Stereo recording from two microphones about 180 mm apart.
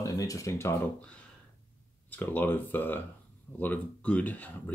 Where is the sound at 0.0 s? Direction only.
20° left (ahead or behind).